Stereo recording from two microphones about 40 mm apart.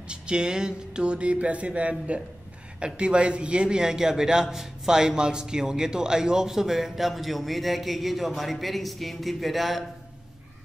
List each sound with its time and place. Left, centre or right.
0.1 s a man's voice: right; by 9.8 s centre